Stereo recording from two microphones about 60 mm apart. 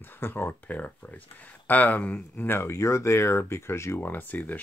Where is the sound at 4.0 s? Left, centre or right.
Left.